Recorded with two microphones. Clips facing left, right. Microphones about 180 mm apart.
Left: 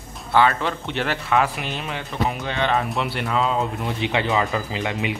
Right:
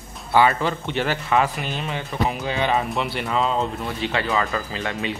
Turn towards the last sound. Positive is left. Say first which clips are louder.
# left 2 dB
turn(degrees=15)  # may be behind; listen again after turning